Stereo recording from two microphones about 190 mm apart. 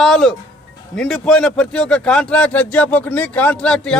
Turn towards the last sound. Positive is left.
turn(degrees=5)  # may be behind; listen again after turning